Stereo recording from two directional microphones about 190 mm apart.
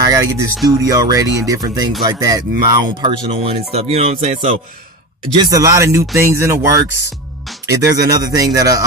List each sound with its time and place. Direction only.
0.0 s a sound: 20° right (ahead or behind)
0.7 s speech: 20° right (ahead or behind); by 4.6 s 35° right (ahead or behind)
5.4 s speech: 20° right (ahead or behind)
7.8 s speech: 20° right (ahead or behind)